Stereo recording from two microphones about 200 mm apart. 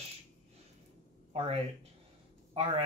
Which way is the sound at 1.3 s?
30° right (ahead or behind).